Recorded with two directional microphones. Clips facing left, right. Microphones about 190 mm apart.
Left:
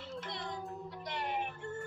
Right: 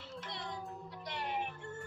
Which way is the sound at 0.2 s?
50° left (ahead or behind).